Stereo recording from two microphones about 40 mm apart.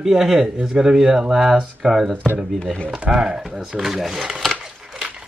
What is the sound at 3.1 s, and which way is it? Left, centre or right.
Speech, centre.